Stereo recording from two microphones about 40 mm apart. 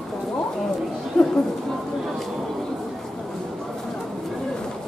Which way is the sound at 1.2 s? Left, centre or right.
Centre.